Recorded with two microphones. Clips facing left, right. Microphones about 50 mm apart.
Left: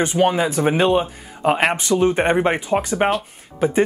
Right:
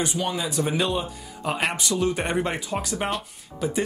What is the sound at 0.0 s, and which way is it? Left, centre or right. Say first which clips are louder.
Speech: left 9 dB; left.